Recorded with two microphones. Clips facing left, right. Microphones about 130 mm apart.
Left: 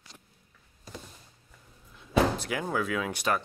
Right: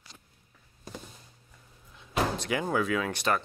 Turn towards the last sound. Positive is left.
turn(degrees=5)  # may be behind; listen again after turning